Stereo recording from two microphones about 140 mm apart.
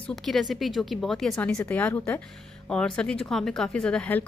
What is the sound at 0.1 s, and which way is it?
A woman's voice, centre (ahead or behind).